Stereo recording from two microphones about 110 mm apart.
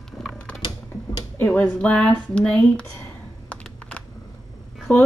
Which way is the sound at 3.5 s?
10° left (ahead or behind).